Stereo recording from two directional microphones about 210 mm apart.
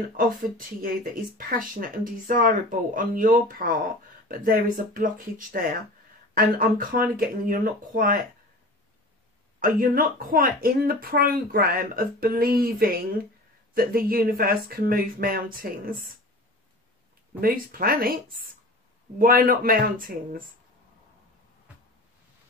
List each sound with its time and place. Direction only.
0.2 s speech: 40° right (ahead or behind)
9.6 s speech: 40° right (ahead or behind)
17.4 s speech: 45° right (ahead or behind)
19.1 s speech: 40° right (ahead or behind)